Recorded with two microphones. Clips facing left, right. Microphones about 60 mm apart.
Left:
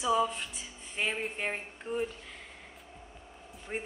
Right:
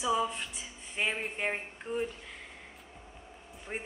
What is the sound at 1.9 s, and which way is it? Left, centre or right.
Speech, centre.